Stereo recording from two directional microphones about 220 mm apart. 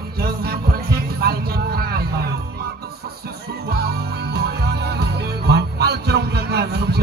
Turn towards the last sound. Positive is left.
turn(degrees=-50)  # may be behind; listen again after turning